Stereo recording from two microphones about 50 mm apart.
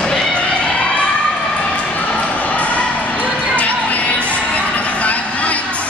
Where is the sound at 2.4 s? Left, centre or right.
Left.